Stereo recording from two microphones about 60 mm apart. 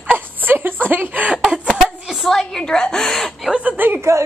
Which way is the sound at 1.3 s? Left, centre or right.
Centre.